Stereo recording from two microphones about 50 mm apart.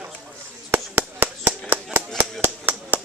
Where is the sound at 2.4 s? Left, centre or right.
Right.